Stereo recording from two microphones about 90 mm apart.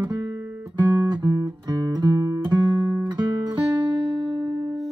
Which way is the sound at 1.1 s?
50° right (ahead or behind).